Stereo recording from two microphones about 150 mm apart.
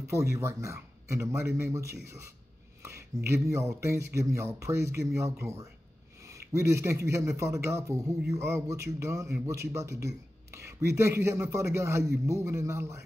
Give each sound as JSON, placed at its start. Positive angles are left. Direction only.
{"t": 0.0, "sound": "a man's voice", "side_deg": -20}
{"t": 2.8, "sound": "a sound", "side_deg": -20}
{"t": 3.3, "sound": "a man's voice", "side_deg": -20}